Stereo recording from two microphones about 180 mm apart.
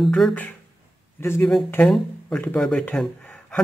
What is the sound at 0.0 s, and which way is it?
Speech, 5° left (ahead or behind).